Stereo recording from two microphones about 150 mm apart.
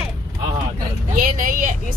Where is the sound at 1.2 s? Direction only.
65° right (ahead or behind).